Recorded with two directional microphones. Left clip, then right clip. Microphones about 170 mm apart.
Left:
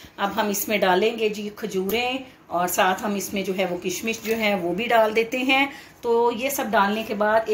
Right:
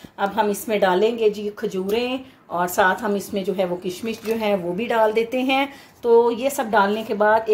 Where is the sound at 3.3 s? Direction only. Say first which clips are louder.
Right 2 dB; 45° right (ahead or behind).